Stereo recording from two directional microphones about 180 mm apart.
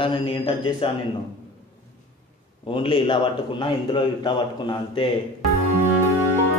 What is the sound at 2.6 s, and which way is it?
A man's voice, 30° left (ahead or behind).